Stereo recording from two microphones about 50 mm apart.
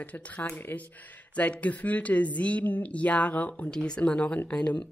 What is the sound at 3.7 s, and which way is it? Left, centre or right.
Speech, centre.